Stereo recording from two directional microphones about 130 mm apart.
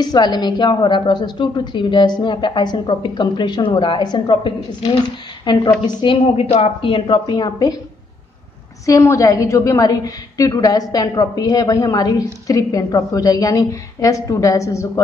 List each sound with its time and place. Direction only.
0.0 s a woman's voice: 35° left (ahead or behind)
6.3 s a woman's voice: 50° left (ahead or behind); by 7.7 s 30° left (ahead or behind)
8.8 s a woman's voice: 25° left (ahead or behind)